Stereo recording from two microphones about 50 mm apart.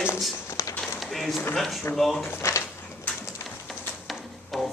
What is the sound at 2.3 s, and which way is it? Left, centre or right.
Speech, left.